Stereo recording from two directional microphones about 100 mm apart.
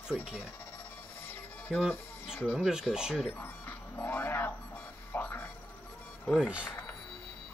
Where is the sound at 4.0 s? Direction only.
20° left (ahead or behind).